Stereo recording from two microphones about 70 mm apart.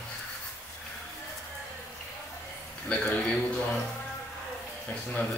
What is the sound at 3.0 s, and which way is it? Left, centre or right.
Speech, left.